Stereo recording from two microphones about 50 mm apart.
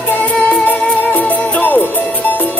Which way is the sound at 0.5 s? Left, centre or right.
Left.